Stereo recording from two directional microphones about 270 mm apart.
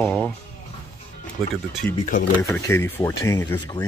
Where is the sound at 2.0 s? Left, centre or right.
Left.